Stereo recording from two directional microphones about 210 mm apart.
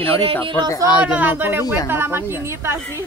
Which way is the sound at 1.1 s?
10° right (ahead or behind).